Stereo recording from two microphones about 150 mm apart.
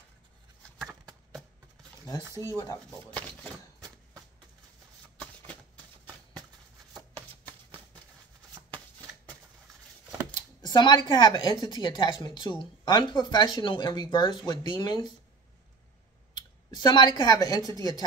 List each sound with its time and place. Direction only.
2.3 s speech: 20° right (ahead or behind)
3.2 s speech: 10° left (ahead or behind)
7.4 s a sound: 30° right (ahead or behind)
10.3 s speech: 30° left (ahead or behind)
16.3 s speech: 30° left (ahead or behind)